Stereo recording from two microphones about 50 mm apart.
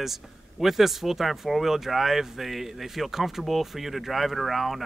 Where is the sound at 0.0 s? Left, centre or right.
Centre.